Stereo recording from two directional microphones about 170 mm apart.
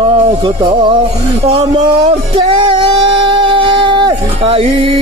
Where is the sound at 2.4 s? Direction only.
30° right (ahead or behind).